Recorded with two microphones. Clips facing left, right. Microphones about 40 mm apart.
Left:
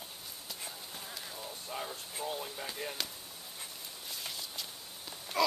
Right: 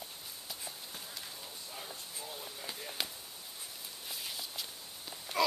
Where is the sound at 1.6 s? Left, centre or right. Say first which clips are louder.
Left 7 dB; left.